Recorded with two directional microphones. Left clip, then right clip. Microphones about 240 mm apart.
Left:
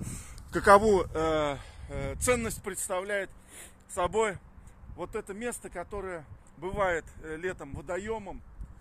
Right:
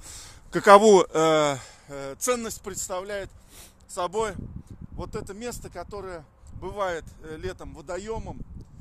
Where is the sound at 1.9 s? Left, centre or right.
Right.